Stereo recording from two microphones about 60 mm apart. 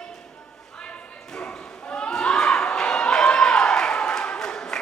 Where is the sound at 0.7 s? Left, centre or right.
Centre.